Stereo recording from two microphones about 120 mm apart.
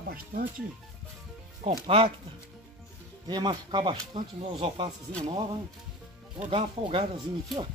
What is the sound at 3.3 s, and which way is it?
Speech, 35° right (ahead or behind).